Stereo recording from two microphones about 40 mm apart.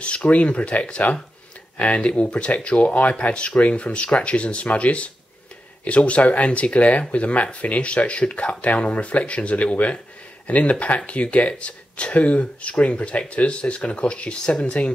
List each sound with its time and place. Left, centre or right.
0.0 s speech: left